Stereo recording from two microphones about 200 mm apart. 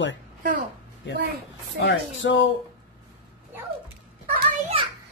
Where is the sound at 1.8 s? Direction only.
65° left (ahead or behind).